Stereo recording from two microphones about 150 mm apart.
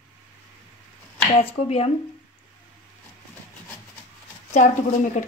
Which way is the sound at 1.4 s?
40° left (ahead or behind).